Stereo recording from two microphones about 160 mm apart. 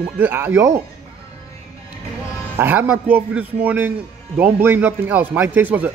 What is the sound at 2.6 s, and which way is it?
A man's voice, 10° right (ahead or behind).